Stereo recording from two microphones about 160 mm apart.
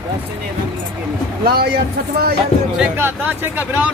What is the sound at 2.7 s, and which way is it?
Speech, 10° right (ahead or behind).